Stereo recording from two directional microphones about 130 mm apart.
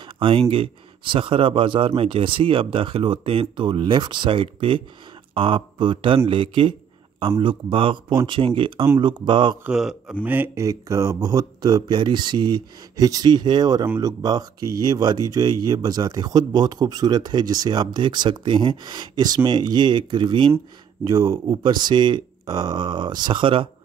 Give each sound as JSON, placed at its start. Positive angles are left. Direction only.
{"t": 0.2, "sound": "a man's voice", "side_deg": -45}
{"t": 9.7, "sound": "a man's voice", "side_deg": -5}
{"t": 10.2, "sound": "speech", "side_deg": -15}